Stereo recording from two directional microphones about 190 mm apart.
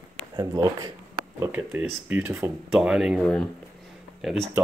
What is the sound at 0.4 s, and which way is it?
Speech, 25° right (ahead or behind).